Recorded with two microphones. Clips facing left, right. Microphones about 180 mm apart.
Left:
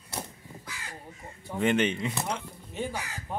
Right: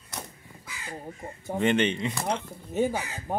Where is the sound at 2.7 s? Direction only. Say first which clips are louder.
Right 8 dB; 45° right (ahead or behind).